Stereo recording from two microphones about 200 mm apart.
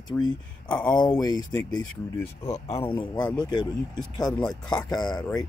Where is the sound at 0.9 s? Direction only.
20° left (ahead or behind).